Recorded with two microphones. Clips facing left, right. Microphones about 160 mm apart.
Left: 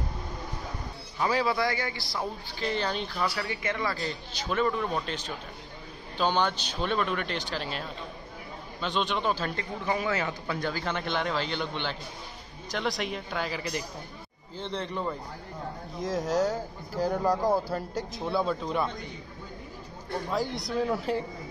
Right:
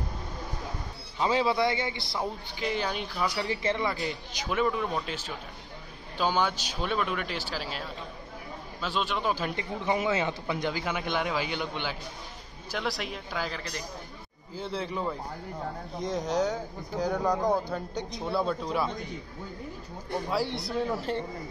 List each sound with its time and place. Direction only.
1.2 s a man's voice: 20° right (ahead or behind)
3.3 s speech: 25° right (ahead or behind); by 18.9 s centre (ahead or behind)
20.2 s speech: centre (ahead or behind)